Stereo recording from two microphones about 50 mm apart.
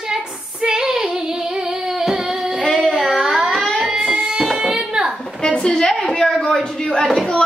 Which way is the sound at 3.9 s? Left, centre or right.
Centre.